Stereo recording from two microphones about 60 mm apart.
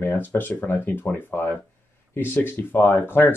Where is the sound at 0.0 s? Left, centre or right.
Left.